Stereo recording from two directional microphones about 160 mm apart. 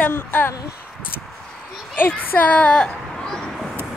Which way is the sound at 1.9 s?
10° left (ahead or behind).